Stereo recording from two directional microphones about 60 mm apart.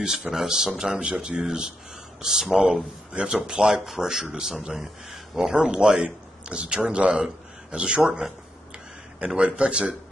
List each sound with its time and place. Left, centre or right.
0.0 s speech: centre
9.2 s speech: centre